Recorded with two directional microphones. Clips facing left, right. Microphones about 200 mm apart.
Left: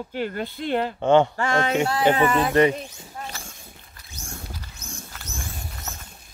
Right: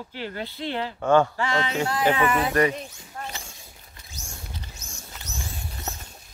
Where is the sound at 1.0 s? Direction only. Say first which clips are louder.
Left 1 dB; 20° left (ahead or behind).